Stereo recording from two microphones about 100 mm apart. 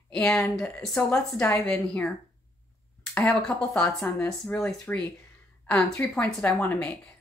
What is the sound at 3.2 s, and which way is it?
Speech, 10° left (ahead or behind).